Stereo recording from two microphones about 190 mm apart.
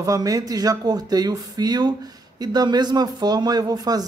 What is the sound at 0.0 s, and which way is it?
A woman's voice, 20° right (ahead or behind).